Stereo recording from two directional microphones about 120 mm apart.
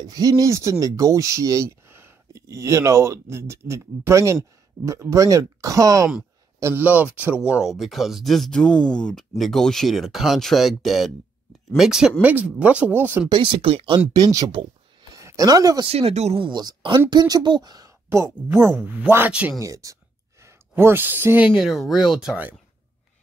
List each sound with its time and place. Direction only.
0.0 s speech: 30° right (ahead or behind)
6.6 s speech: 15° right (ahead or behind)
13.3 s speech: 45° right (ahead or behind)
14.1 s speech: 30° right (ahead or behind)
15.9 s speech: 60° right (ahead or behind)
16.3 s speech: 40° right (ahead or behind); by 19.5 s 15° right (ahead or behind)
19.6 s a sound: 25° right (ahead or behind)
21.5 s speech: centre (ahead or behind)